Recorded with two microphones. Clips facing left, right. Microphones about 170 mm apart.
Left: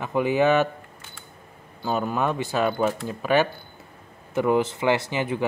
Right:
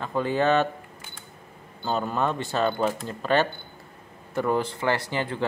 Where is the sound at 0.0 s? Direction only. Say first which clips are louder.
Left 3 dB; 15° left (ahead or behind).